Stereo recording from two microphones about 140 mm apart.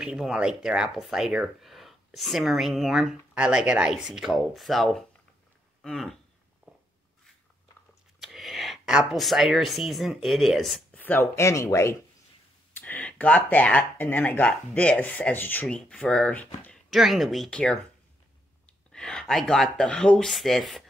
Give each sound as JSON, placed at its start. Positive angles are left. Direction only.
{"t": 0.0, "sound": "speech", "side_deg": -5}
{"t": 6.7, "sound": "a sound", "side_deg": -10}
{"t": 8.2, "sound": "speech", "side_deg": 0}
{"t": 11.0, "sound": "speech", "side_deg": 15}
{"t": 12.8, "sound": "speech", "side_deg": 10}
{"t": 16.9, "sound": "speech", "side_deg": 0}
{"t": 18.9, "sound": "speech", "side_deg": 5}